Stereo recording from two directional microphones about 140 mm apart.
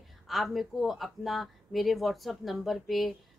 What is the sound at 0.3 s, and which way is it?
Speech, centre (ahead or behind).